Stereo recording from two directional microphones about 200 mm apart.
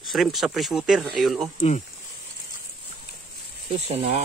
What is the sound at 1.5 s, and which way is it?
Speech, 35° left (ahead or behind).